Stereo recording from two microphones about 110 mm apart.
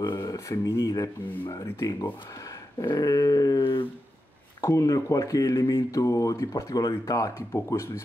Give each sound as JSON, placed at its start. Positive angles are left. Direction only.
{"t": 0.0, "sound": "speech", "side_deg": 35}